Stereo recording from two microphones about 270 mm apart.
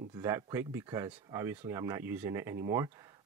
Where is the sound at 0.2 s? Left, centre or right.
Centre.